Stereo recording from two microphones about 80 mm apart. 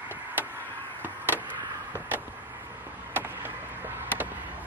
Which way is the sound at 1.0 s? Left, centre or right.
Right.